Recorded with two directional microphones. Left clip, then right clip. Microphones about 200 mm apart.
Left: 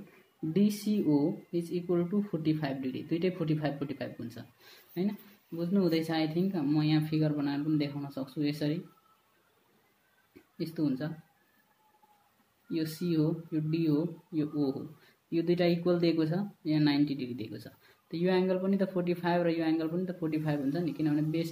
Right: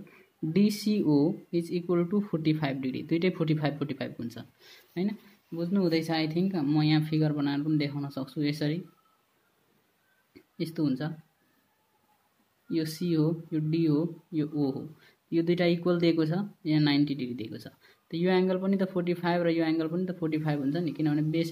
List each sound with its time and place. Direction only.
0.5 s speech: 40° right (ahead or behind)
4.9 s speech: 25° right (ahead or behind)
10.6 s speech: 35° right (ahead or behind)
12.7 s speech: 30° right (ahead or behind)